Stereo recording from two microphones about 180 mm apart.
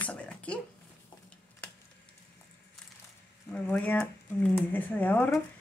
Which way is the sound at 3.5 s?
10° left (ahead or behind).